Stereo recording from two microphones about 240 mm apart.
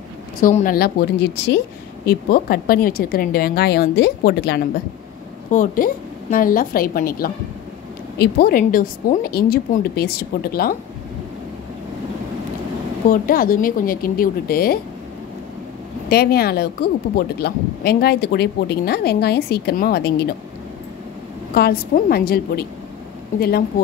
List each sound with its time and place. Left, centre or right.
0.4 s speech: left
13.1 s speech: left
16.1 s speech: left
21.5 s speech: left